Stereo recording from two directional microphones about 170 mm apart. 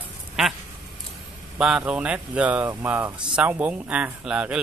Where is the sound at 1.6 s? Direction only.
5° right (ahead or behind).